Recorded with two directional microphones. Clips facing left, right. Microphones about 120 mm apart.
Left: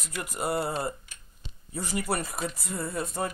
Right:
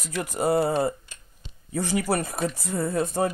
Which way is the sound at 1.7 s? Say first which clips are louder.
Right 5 dB; 85° right.